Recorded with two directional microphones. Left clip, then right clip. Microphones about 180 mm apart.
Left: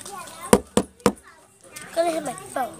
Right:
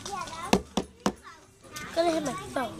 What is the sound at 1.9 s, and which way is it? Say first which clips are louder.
Speech: left 3 dB; 15° right (ahead or behind).